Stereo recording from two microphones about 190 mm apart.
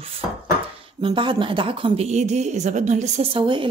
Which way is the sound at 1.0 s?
25° right (ahead or behind).